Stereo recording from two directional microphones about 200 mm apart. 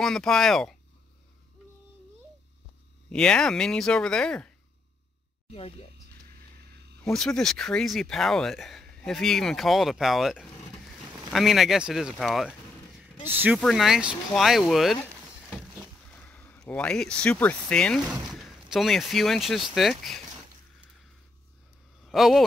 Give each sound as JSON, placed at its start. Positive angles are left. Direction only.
{"t": 0.0, "sound": "speech", "side_deg": 5}
{"t": 3.1, "sound": "speech", "side_deg": 5}
{"t": 5.5, "sound": "speech", "side_deg": 30}
{"t": 7.1, "sound": "speech", "side_deg": 0}
{"t": 13.6, "sound": "speech", "side_deg": 0}
{"t": 16.2, "sound": "speech", "side_deg": 10}
{"t": 22.0, "sound": "speech", "side_deg": 0}